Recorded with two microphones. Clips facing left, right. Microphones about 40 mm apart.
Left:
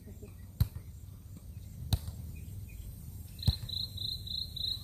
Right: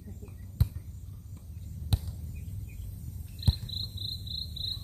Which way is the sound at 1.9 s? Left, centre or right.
Right.